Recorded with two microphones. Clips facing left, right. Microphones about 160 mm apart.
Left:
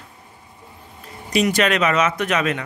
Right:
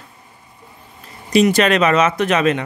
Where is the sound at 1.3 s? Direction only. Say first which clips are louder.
Right 5 dB; 30° right (ahead or behind).